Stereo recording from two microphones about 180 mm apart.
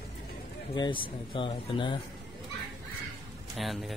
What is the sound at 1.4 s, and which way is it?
Speech, 25° left (ahead or behind).